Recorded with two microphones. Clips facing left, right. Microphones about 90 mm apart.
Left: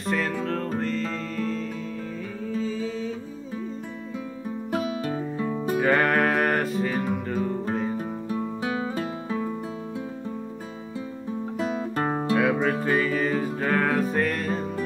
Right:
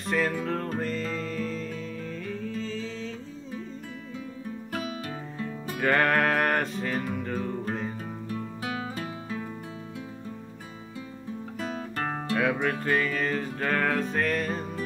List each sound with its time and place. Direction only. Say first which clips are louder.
0.0 s music: left 1 dB; centre (ahead or behind)
2.4 s music: left 9 dB; 10° left (ahead or behind)
4.7 s music: left 7 dB; 30° left (ahead or behind)
5.8 s music: left 2 dB; 5° left (ahead or behind)
8.6 s music: left 4 dB; 30° left (ahead or behind)
11.5 s music: left 6 dB; 25° left (ahead or behind)
12.8 s music: left 3 dB; 10° left (ahead or behind)